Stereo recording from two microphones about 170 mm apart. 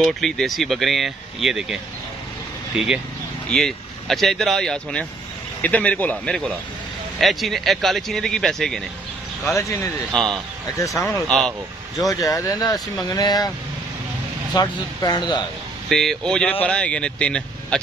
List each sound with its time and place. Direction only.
0.0 s a man's voice: centre (ahead or behind)
9.5 s a man's voice: 15° left (ahead or behind)
10.1 s speech: centre (ahead or behind)
10.8 s a man's voice: 20° left (ahead or behind)
11.2 s speech: 5° left (ahead or behind)
12.1 s speech: 20° left (ahead or behind)
14.5 s speech: 25° left (ahead or behind)
15.9 s speech: centre (ahead or behind)